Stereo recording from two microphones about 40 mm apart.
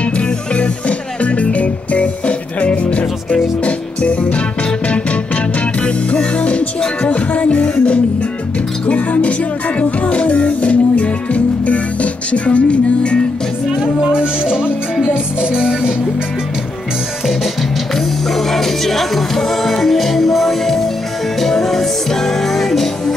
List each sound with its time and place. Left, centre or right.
0.0 s music: left
14.0 s music: right
17.9 s music: centre